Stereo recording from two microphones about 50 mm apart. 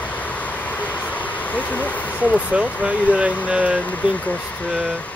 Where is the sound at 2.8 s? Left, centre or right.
Right.